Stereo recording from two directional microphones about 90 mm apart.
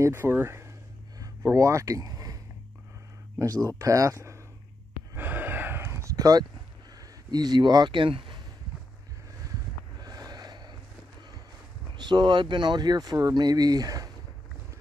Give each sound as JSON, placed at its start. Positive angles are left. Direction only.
{"t": 0.0, "sound": "speech", "side_deg": -25}
{"t": 3.6, "sound": "speech", "side_deg": -40}
{"t": 5.1, "sound": "sigh", "side_deg": -20}
{"t": 6.1, "sound": "a sound", "side_deg": -45}
{"t": 7.0, "sound": "speech", "side_deg": -50}
{"t": 10.0, "sound": "a sound", "side_deg": -45}
{"t": 11.9, "sound": "speech", "side_deg": -55}